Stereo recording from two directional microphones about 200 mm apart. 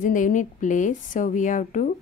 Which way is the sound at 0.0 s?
40° left (ahead or behind).